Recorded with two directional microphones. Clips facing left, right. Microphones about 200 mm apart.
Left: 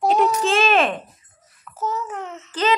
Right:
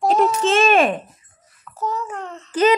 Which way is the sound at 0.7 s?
10° right (ahead or behind).